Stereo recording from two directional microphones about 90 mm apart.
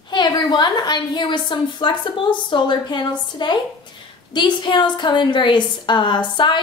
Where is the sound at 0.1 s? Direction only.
55° left (ahead or behind).